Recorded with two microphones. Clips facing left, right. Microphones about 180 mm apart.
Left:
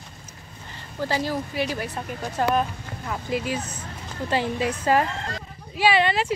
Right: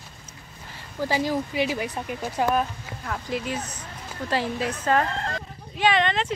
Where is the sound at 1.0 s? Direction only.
10° right (ahead or behind).